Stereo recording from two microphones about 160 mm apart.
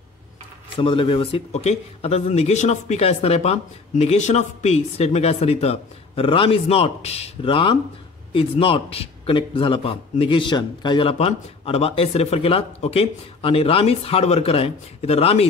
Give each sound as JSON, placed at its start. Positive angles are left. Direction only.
{"t": 0.7, "sound": "a man's voice", "side_deg": 35}